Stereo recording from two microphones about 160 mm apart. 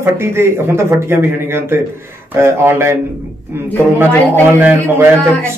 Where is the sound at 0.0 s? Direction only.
15° right (ahead or behind).